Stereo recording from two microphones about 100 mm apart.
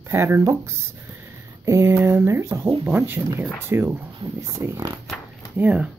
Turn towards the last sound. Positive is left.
turn(degrees=-15)  # may be behind; listen again after turning